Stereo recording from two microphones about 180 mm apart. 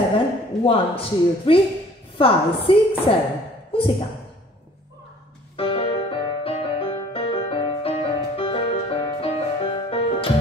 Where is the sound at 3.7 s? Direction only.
30° left (ahead or behind).